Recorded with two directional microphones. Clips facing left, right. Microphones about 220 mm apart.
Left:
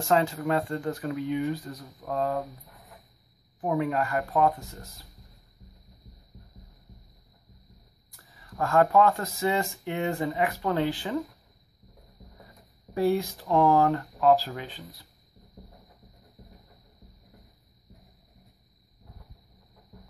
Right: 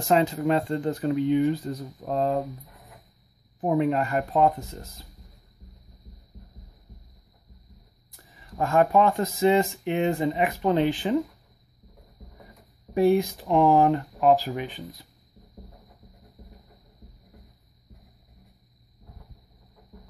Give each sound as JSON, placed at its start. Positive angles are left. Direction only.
{"t": 0.1, "sound": "speech", "side_deg": -20}
{"t": 3.6, "sound": "speech", "side_deg": -25}
{"t": 8.2, "sound": "speech", "side_deg": -20}
{"t": 12.9, "sound": "speech", "side_deg": -20}